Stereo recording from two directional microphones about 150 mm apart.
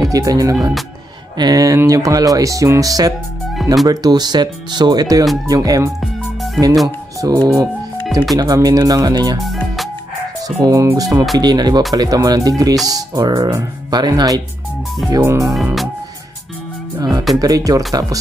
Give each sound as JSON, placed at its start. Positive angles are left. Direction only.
{"t": 0.0, "sound": "speech", "side_deg": -25}
{"t": 7.2, "sound": "speech", "side_deg": -25}
{"t": 10.6, "sound": "speech", "side_deg": -20}
{"t": 15.5, "sound": "music", "side_deg": 0}
{"t": 17.4, "sound": "speech", "side_deg": -25}